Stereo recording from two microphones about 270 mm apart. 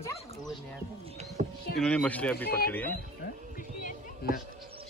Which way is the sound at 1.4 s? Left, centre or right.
Right.